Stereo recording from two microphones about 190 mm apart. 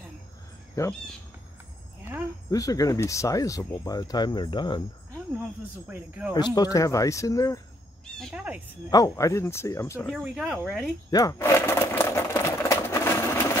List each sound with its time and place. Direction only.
0.8 s speech: 15° left (ahead or behind)
2.5 s speech: 20° left (ahead or behind)
5.9 s speech: 10° right (ahead or behind)
6.3 s speech: 20° left (ahead or behind)
8.2 s speech: 5° right (ahead or behind)
8.9 s speech: 15° left (ahead or behind)
10.1 s speech: 5° right (ahead or behind)
11.1 s sewing machine: 20° left (ahead or behind)